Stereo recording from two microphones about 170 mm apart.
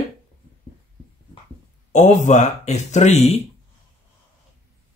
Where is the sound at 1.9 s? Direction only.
45° left (ahead or behind).